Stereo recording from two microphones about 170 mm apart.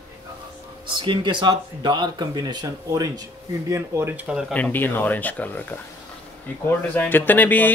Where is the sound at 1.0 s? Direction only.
30° right (ahead or behind); by 4.4 s 10° right (ahead or behind).